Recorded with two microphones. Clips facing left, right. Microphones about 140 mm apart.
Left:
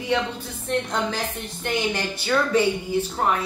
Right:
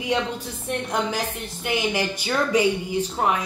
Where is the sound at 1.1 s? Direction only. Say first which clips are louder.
Right 1 dB; 10° right (ahead or behind).